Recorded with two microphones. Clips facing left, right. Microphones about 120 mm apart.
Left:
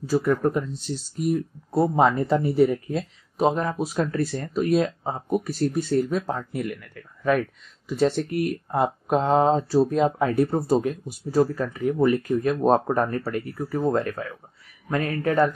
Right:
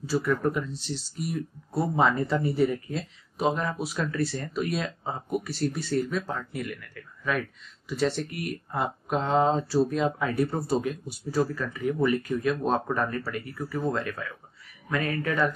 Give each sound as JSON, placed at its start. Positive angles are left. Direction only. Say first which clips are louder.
{"t": 0.0, "sound": "speech", "louder": "left 4 dB", "side_deg": 50}
{"t": 1.7, "sound": "speech", "louder": "left 5 dB", "side_deg": 40}
{"t": 13.6, "sound": "speech", "louder": "left 4 dB", "side_deg": 30}
{"t": 13.9, "sound": "speech", "louder": "left 6 dB", "side_deg": 45}